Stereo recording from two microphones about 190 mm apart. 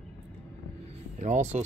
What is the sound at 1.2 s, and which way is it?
Speech, 35° right (ahead or behind).